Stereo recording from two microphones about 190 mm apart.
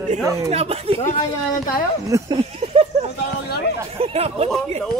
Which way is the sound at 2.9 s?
35° right (ahead or behind).